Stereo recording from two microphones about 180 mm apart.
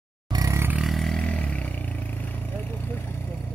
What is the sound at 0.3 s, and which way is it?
Vehicle, 20° right (ahead or behind).